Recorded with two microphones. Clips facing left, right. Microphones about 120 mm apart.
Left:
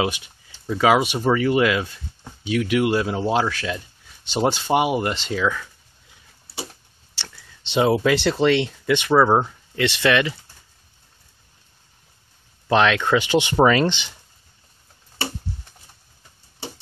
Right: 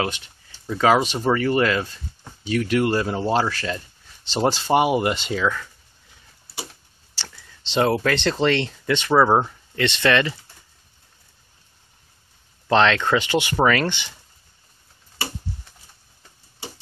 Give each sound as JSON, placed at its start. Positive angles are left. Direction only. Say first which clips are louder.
{"t": 0.0, "sound": "speech", "louder": "left 2 dB", "side_deg": 15}
{"t": 5.4, "sound": "speech", "louder": "left 2 dB", "side_deg": 5}
{"t": 7.7, "sound": "speech", "louder": "left 2 dB", "side_deg": 10}
{"t": 9.8, "sound": "speech", "louder": "even", "side_deg": 10}
{"t": 12.6, "sound": "speech", "louder": "even", "side_deg": 10}